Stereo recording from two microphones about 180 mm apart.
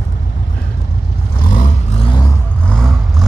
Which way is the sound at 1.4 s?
45° left (ahead or behind).